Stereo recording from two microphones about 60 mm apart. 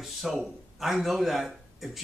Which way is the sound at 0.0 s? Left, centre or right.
Centre.